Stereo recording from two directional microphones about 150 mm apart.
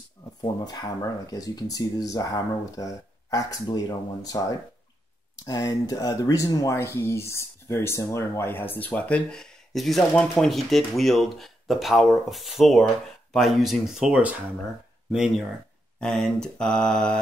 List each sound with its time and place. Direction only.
0.4 s speech: 30° left (ahead or behind); by 12.8 s centre (ahead or behind)
13.3 s mantra: centre (ahead or behind)